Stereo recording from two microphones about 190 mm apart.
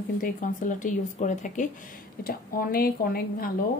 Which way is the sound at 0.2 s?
45° left (ahead or behind).